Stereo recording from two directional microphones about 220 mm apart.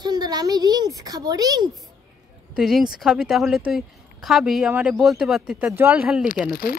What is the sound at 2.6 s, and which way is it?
Speech, centre (ahead or behind).